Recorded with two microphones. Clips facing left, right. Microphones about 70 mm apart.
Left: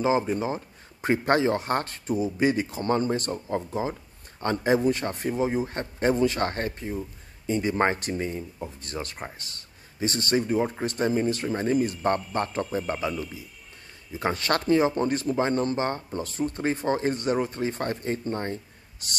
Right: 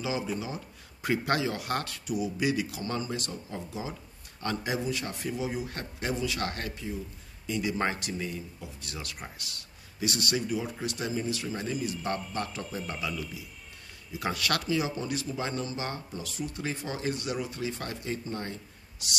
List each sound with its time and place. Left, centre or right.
0.0 s speech: left